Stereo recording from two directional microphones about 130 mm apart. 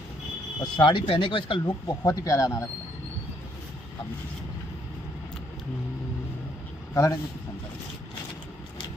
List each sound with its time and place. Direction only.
0.6 s speech: 35° left (ahead or behind)
6.9 s speech: 25° left (ahead or behind)